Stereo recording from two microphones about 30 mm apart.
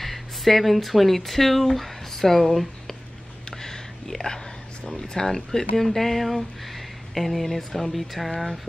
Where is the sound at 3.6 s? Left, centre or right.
Centre.